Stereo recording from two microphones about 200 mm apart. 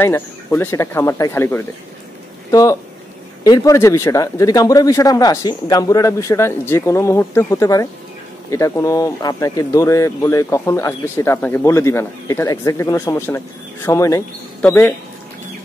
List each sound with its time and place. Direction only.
0.0 s speech: 10° left (ahead or behind)